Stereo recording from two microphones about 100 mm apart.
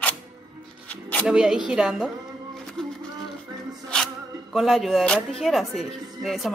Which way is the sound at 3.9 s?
10° left (ahead or behind).